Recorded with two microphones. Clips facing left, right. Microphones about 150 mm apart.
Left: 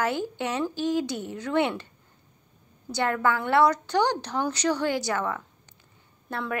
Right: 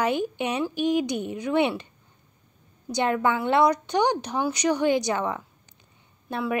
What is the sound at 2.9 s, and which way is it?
A woman's voice, 15° right (ahead or behind).